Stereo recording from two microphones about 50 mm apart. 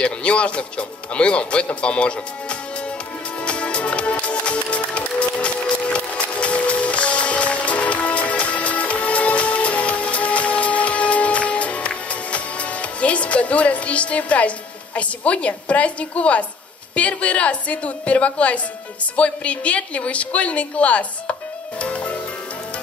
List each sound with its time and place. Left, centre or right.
0.0 s speech: left
3.4 s music: left
15.0 s a woman's voice: left